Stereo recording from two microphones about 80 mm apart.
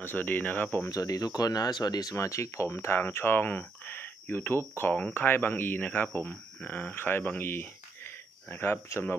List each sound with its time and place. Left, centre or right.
0.0 s speech: left
0.8 s speech: left
2.1 s speech: left